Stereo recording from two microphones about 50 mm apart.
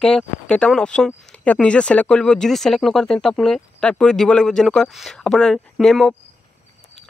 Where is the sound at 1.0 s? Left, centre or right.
Left.